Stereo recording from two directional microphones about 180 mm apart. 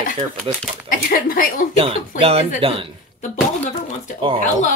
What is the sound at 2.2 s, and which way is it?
Speech, 35° right (ahead or behind).